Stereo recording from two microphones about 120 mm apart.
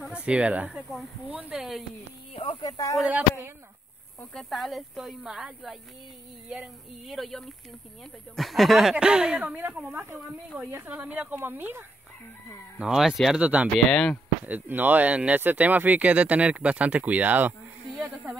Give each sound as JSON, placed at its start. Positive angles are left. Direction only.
{"t": 0.0, "sound": "speech", "side_deg": -10}
{"t": 2.3, "sound": "speech", "side_deg": 45}
{"t": 3.0, "sound": "speech", "side_deg": -15}
{"t": 4.2, "sound": "speech", "side_deg": 5}
{"t": 12.7, "sound": "speech", "side_deg": -5}
{"t": 13.8, "sound": "speech", "side_deg": 5}
{"t": 14.4, "sound": "speech", "side_deg": -15}
{"t": 17.9, "sound": "speech", "side_deg": 0}